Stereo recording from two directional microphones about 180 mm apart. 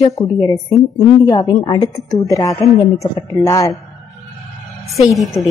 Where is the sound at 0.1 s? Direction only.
20° left (ahead or behind).